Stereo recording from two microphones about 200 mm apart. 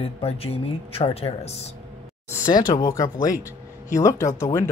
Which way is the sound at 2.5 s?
20° left (ahead or behind).